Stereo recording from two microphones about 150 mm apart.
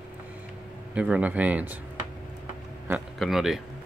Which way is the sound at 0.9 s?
5° right (ahead or behind).